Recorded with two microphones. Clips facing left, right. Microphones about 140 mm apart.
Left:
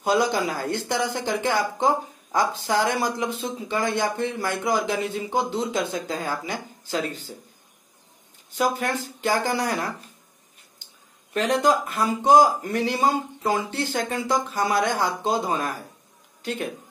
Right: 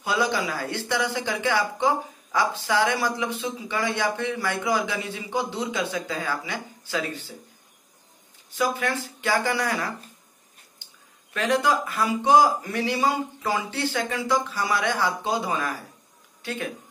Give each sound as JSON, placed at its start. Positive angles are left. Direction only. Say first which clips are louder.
{"t": 0.0, "sound": "speech", "louder": "left 3 dB", "side_deg": 45}
{"t": 8.5, "sound": "speech", "louder": "left 1 dB", "side_deg": 45}
{"t": 11.4, "sound": "speech", "louder": "left 1 dB", "side_deg": 45}